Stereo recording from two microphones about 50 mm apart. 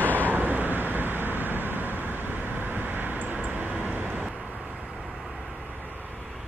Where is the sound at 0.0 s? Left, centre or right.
Left.